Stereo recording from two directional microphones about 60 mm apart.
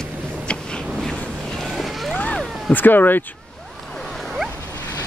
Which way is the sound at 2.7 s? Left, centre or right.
Left.